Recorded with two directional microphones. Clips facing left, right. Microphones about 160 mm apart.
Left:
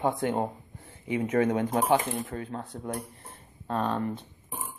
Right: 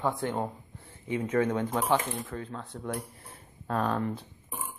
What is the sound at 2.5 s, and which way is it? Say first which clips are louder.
Speech: left 2 dB; 35° left (ahead or behind).